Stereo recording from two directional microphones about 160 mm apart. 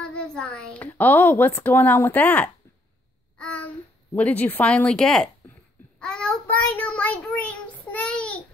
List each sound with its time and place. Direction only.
0.0 s a woman's voice: 5° left (ahead or behind)
5.9 s child singing: 5° left (ahead or behind)